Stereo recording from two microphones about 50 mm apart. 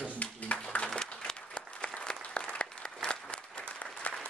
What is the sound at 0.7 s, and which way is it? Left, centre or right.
Applause, centre.